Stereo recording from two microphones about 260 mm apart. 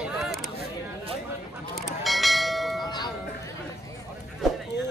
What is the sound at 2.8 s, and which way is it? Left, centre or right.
Music, centre.